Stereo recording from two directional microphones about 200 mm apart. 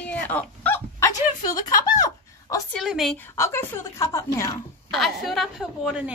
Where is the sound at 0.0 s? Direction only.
5° left (ahead or behind).